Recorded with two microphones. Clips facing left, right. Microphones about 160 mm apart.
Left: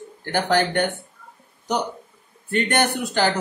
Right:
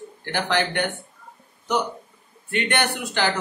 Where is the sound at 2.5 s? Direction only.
40° left (ahead or behind).